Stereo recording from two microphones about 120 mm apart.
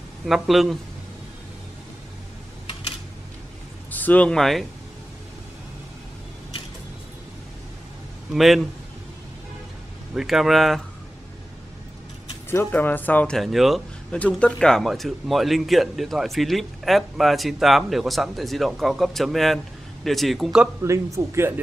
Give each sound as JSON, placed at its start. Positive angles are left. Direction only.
{"t": 0.2, "sound": "speech", "side_deg": 0}
{"t": 3.9, "sound": "speech", "side_deg": 15}
{"t": 8.3, "sound": "speech", "side_deg": 0}
{"t": 10.1, "sound": "speech", "side_deg": 0}
{"t": 12.4, "sound": "speech", "side_deg": 15}
{"t": 13.4, "sound": "speech", "side_deg": 0}
{"t": 20.8, "sound": "speech", "side_deg": -25}